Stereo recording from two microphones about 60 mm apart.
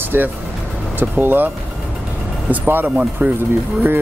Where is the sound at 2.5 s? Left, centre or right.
Right.